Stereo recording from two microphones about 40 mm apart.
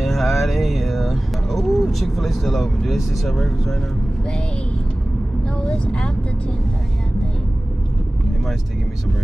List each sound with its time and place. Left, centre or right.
0.0 s a sound: centre
2.9 s speech: centre
5.6 s speech: left